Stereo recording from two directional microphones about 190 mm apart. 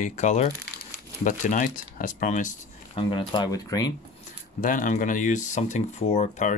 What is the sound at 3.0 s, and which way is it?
Speech, 25° left (ahead or behind).